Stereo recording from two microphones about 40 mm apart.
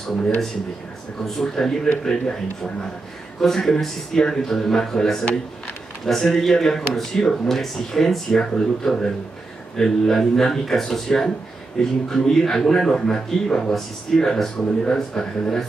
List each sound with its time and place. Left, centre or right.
1.2 s speech: centre